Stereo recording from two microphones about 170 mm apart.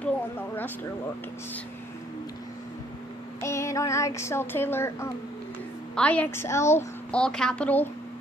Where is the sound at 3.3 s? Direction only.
15° left (ahead or behind).